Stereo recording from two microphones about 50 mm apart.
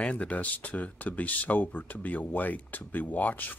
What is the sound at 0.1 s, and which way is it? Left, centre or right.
Speech, left.